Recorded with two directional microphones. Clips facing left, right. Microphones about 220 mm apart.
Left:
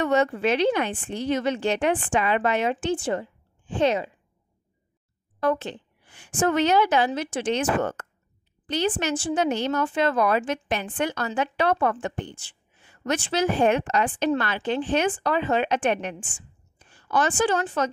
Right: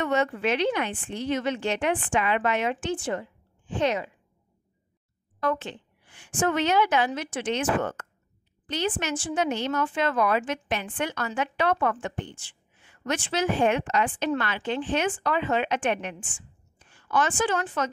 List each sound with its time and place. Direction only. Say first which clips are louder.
0.0 s a woman's voice: left 3 dB; 35° left (ahead or behind)
5.4 s a woman's voice: left 3 dB; 35° left (ahead or behind)